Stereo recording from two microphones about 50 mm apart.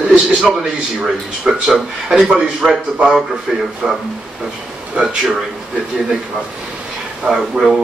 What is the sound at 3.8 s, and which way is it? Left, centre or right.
Speech, centre.